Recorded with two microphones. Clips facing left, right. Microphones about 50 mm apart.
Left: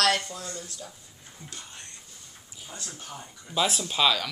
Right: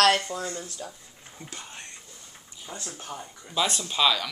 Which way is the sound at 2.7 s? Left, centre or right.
Centre.